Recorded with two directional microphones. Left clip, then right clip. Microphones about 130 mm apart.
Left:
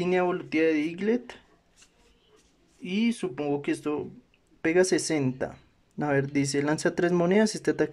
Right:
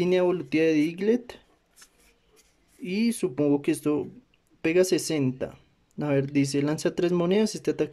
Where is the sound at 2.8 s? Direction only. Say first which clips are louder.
Right 2 dB; 30° right (ahead or behind).